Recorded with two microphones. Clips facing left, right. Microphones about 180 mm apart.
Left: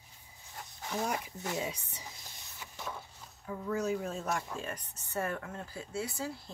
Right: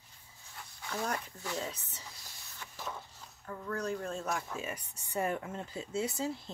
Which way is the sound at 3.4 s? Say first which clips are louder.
Left 3 dB; 5° left (ahead or behind).